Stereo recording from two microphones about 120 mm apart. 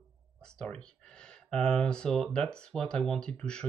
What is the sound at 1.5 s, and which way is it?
Speech, 5° left (ahead or behind).